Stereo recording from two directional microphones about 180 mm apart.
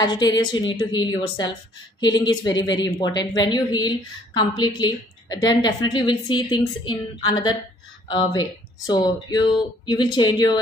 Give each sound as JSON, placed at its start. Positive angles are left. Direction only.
{"t": 0.0, "sound": "a woman's voice", "side_deg": 25}